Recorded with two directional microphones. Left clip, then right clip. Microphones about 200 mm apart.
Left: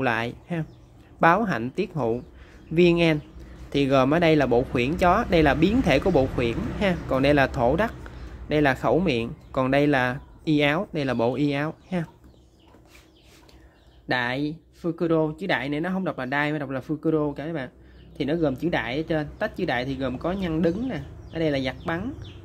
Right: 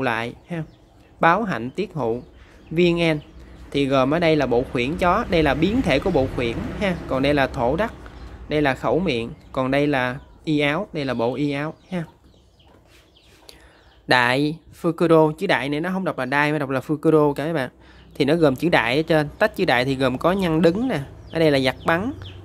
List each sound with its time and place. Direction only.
0.0 s speech: centre (ahead or behind)
14.0 s speech: 20° right (ahead or behind)